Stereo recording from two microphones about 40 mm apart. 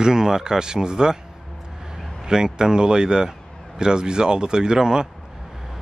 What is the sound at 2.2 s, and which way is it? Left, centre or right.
Speech, centre.